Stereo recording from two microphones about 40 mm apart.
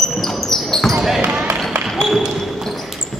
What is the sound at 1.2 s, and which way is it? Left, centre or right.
Basketball bounce, right.